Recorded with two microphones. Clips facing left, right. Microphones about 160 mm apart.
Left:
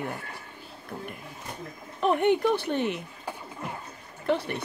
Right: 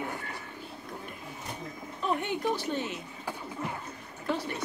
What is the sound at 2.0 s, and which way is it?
Speech, 65° left (ahead or behind).